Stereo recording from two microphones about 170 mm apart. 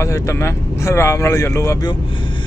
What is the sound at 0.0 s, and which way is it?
Speech, 15° left (ahead or behind).